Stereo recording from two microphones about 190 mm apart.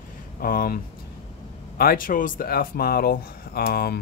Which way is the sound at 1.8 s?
50° left (ahead or behind).